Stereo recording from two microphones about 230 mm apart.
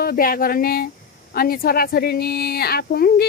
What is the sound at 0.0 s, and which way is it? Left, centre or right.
A woman's voice, left.